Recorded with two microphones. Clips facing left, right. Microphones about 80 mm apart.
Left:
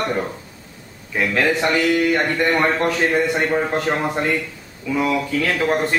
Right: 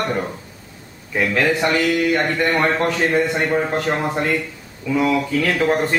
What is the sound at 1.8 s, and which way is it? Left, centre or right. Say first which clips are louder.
Speech: even; centre.